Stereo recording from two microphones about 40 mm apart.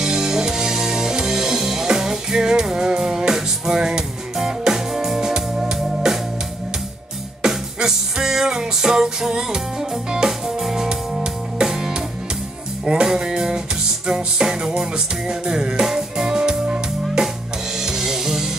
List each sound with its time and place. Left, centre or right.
0.0 s music: centre
7.4 s music: centre
10.6 s music: centre